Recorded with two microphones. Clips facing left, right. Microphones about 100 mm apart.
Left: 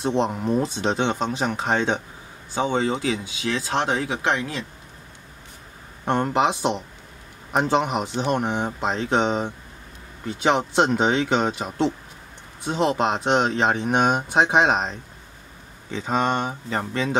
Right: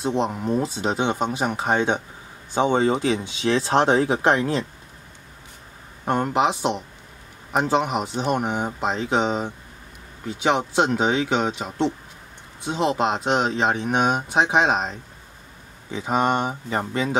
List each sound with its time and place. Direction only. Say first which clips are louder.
0.0 s a man's voice: left 1 dB; centre (ahead or behind); by 4.6 s 35° right (ahead or behind)
6.0 s speech: even; 5° right (ahead or behind)
15.9 s speech: right 1 dB; 10° right (ahead or behind)